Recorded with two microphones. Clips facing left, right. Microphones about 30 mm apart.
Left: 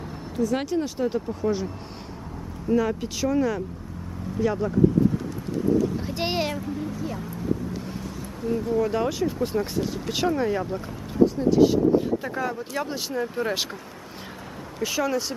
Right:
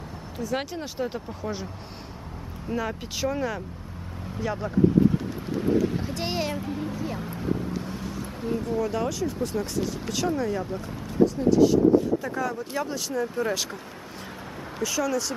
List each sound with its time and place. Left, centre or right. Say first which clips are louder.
0.4 s speech: left 6 dB; centre
2.7 s speech: left 6 dB; centre
6.1 s speech: left 3 dB; centre
6.5 s speech: even; centre
7.8 s vehicle: even; centre
8.5 s speech: left 3 dB; centre
14.8 s speech: left 1 dB; left